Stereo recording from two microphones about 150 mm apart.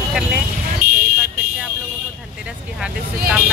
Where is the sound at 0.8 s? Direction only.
65° right (ahead or behind).